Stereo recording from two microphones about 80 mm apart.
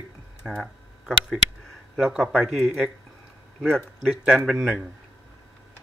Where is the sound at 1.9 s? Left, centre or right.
Centre.